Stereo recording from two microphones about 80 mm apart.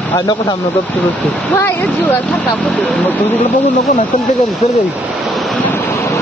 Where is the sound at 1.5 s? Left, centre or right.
Left.